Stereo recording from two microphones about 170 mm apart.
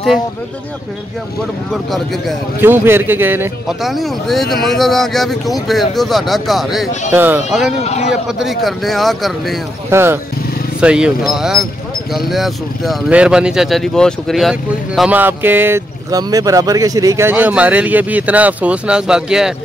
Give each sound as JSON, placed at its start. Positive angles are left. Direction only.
{"t": 1.7, "sound": "speech", "side_deg": 0}
{"t": 2.6, "sound": "speech", "side_deg": -15}
{"t": 3.8, "sound": "speech", "side_deg": 0}
{"t": 7.8, "sound": "a man's voice", "side_deg": 40}
{"t": 8.1, "sound": "speech", "side_deg": 0}
{"t": 9.8, "sound": "speech", "side_deg": -15}